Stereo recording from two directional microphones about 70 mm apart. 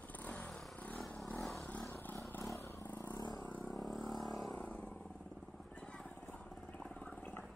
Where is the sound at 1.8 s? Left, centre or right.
Left.